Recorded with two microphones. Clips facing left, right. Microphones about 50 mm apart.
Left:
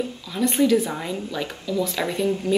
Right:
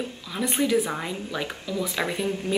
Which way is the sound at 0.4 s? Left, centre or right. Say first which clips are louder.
Left 4 dB; centre.